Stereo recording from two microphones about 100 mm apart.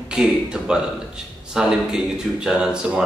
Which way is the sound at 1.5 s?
10° right (ahead or behind).